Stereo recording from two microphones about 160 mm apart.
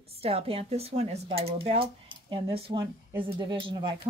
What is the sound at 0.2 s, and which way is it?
Speech, 35° right (ahead or behind).